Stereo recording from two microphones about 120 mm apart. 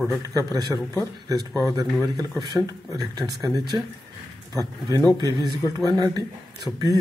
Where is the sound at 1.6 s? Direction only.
30° right (ahead or behind).